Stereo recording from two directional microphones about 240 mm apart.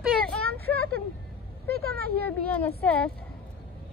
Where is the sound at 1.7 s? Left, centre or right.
Right.